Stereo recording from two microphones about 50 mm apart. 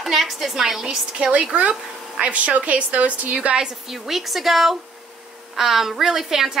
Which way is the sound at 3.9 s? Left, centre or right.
Centre.